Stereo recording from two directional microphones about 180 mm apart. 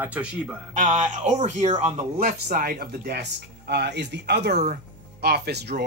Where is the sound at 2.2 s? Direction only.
55° right (ahead or behind).